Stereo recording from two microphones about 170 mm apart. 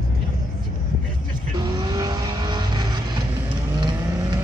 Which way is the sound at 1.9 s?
20° right (ahead or behind).